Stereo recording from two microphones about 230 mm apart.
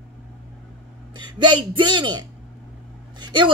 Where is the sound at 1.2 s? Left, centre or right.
Centre.